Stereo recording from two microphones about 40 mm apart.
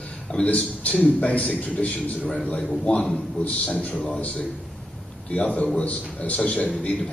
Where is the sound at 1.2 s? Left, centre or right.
Left.